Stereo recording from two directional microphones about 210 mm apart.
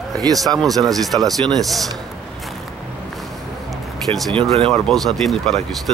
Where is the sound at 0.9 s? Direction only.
Centre (ahead or behind).